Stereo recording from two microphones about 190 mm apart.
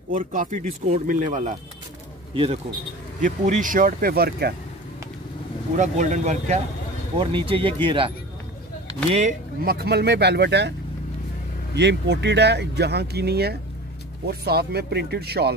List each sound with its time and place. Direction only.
0.1 s speech: 45° right (ahead or behind)
3.3 s speech: 40° right (ahead or behind)
5.8 s speech: 40° right (ahead or behind)
7.2 s speech: 30° right (ahead or behind)
9.7 s speech: 60° right (ahead or behind)
11.7 s speech: 65° right (ahead or behind)